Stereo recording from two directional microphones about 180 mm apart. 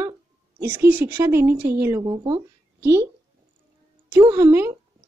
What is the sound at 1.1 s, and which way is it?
A woman's voice, 15° right (ahead or behind).